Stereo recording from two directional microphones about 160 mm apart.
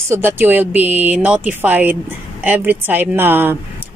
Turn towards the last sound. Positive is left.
turn(degrees=-15)  # may be behind; listen again after turning